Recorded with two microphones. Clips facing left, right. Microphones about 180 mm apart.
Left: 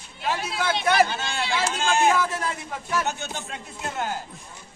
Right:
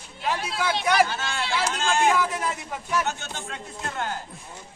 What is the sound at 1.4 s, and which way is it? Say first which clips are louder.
Speech: left 1 dB; 5° left (ahead or behind).